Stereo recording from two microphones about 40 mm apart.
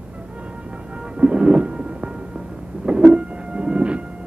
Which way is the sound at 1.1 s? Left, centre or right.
Right.